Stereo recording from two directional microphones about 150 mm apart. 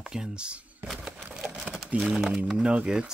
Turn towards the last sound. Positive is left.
turn(degrees=-5)  # may be behind; listen again after turning